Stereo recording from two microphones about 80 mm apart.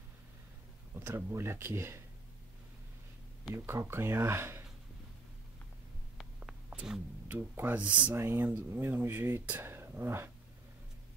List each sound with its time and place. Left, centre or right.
0.9 s speech: right
3.5 s speech: right
6.1 s a sound: centre
7.2 s speech: right
8.1 s speech: right